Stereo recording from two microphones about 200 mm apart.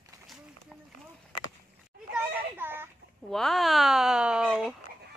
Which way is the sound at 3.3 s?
Centre (ahead or behind).